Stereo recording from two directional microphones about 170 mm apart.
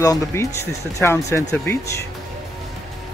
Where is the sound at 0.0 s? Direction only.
20° left (ahead or behind).